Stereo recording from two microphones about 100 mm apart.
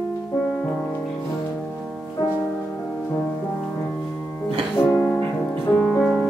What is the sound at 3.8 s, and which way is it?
Music, 15° left (ahead or behind).